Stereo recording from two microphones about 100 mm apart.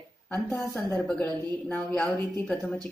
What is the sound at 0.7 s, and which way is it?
Speech, 15° left (ahead or behind).